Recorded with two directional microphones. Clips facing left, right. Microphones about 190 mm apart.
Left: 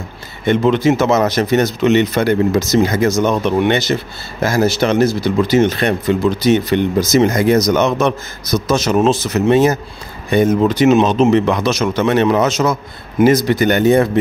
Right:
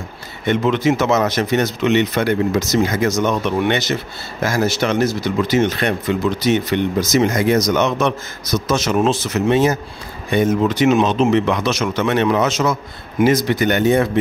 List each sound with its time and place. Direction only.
0.5 s speech: 30° left (ahead or behind)